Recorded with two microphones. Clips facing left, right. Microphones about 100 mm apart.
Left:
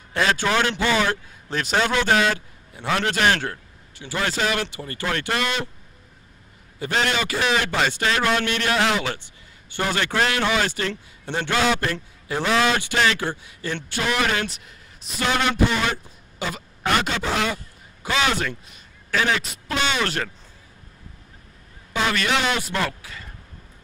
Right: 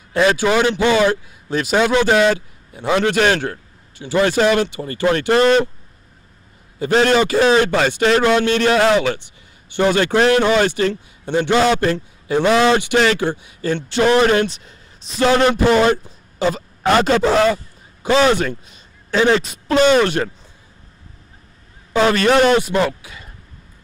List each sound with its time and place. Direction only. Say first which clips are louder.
0.1 s a man's voice: right 6 dB; 15° right (ahead or behind); by 5.7 s 35° right (ahead or behind)
6.8 s a man's voice: right 9 dB; 35° right (ahead or behind)
11.2 s a man's voice: right 8 dB; 20° right (ahead or behind)
11.6 s a man's voice: right 6 dB; 30° right (ahead or behind)
21.9 s a man's voice: right 9 dB; 40° right (ahead or behind)
22.6 s speech: right 8 dB; 20° right (ahead or behind)